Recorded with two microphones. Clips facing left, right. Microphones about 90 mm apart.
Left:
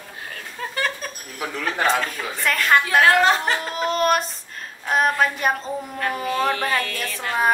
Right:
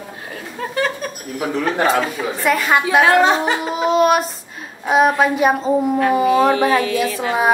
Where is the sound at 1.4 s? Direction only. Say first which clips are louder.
Right 6 dB; 20° right (ahead or behind).